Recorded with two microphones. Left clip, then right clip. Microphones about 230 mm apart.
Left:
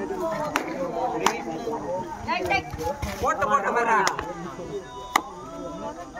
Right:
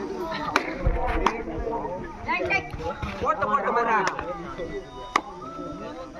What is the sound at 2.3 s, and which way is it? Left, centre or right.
Children playing, centre.